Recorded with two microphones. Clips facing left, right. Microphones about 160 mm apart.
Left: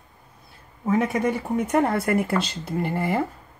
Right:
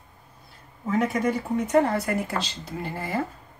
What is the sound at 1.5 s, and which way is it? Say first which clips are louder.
Speech: right 1 dB; 55° left (ahead or behind).